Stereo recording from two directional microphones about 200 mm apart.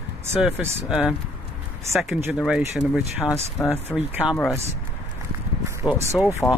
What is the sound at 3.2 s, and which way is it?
Speech, 15° left (ahead or behind).